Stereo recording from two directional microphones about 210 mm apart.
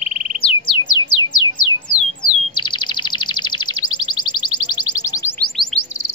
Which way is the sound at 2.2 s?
20° left (ahead or behind).